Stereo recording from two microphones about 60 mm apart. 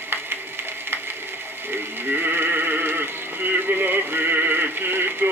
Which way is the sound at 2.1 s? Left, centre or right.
Right.